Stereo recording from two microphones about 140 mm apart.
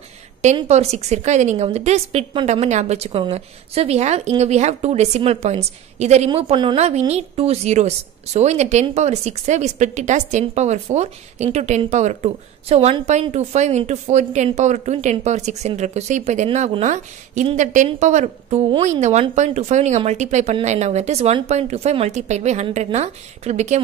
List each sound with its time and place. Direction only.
0.7 s speech: 55° right (ahead or behind); by 6.8 s 35° right (ahead or behind)
6.8 s a woman's voice: 50° right (ahead or behind)